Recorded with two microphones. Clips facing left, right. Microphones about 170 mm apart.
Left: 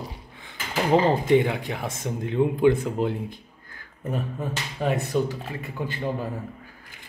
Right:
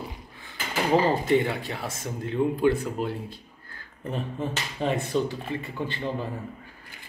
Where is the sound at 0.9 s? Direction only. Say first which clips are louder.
Left 3 dB; 20° left (ahead or behind).